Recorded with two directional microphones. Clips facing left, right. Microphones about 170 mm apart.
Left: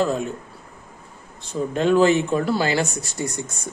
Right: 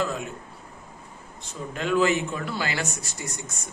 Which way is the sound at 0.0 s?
30° left (ahead or behind).